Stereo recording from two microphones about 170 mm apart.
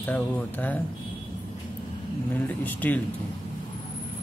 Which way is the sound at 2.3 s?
10° left (ahead or behind).